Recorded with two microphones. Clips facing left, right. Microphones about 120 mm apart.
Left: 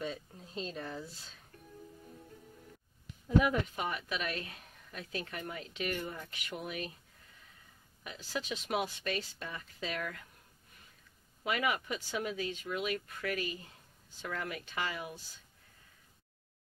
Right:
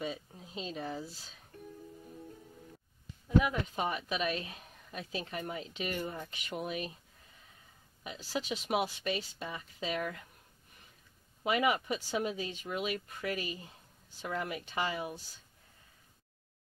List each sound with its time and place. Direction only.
0.0 s speech: 10° right (ahead or behind)
3.7 s speech: 25° right (ahead or behind)
8.0 s speech: 15° right (ahead or behind)
11.4 s speech: 20° right (ahead or behind)